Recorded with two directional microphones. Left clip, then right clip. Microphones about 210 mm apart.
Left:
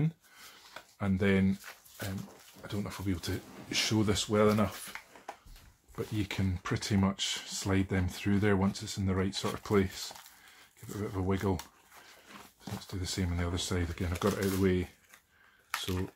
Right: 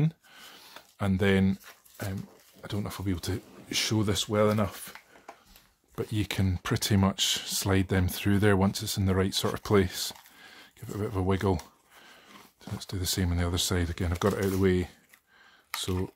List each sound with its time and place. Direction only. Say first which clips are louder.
0.9 s speech: right 4 dB; 45° right (ahead or behind)
2.6 s speech: right 3 dB; 50° right (ahead or behind)
5.9 s speech: right 4 dB; 45° right (ahead or behind)
12.8 s speech: right 6 dB; 45° right (ahead or behind)